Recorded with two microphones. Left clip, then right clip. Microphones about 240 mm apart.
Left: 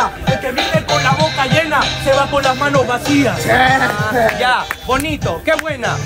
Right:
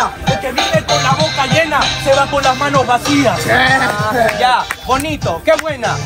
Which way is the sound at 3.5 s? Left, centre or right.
Left.